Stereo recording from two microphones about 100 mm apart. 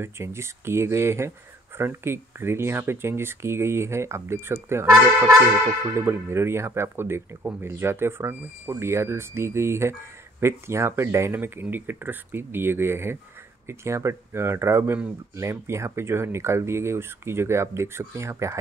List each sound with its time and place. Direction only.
0.0 s speech: 25° right (ahead or behind)